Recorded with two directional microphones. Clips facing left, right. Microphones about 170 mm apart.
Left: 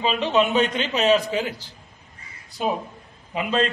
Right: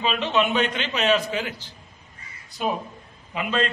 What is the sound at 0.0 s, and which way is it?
A man's voice, 35° left (ahead or behind).